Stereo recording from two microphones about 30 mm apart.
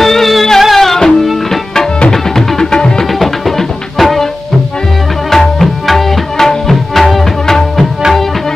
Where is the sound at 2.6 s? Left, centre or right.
Left.